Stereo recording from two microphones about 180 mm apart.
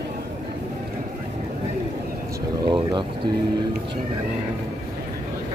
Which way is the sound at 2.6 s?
25° right (ahead or behind).